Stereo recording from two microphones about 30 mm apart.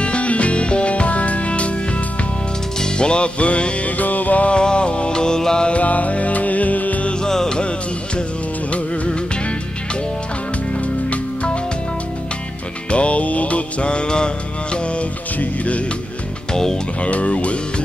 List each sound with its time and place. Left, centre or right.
0.0 s music: left
2.8 s music: left
4.0 s music: left
4.5 s music: left
5.1 s music: left
5.7 s music: left
7.2 s music: left
12.9 s mantra: left
17.0 s music: left